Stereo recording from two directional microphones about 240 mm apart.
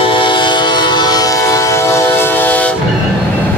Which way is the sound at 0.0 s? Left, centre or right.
Left.